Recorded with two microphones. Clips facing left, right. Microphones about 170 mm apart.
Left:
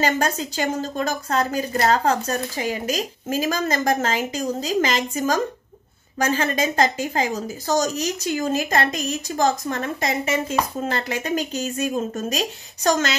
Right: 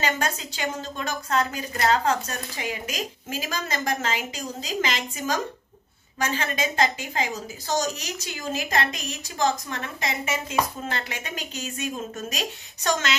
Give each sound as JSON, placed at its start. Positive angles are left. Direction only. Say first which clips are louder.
{"t": 0.0, "sound": "a woman's voice", "louder": "left 5 dB", "side_deg": 40}